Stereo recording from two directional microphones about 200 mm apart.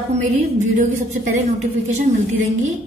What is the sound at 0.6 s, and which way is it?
A woman's voice, 35° right (ahead or behind).